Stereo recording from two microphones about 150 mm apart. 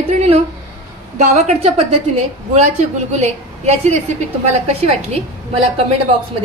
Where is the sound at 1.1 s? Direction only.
50° right (ahead or behind).